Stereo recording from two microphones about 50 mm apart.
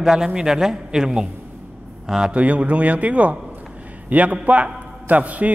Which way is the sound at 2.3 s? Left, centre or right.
Right.